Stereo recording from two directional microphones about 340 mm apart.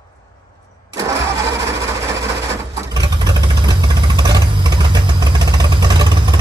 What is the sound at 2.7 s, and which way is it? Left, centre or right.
Vehicle, centre.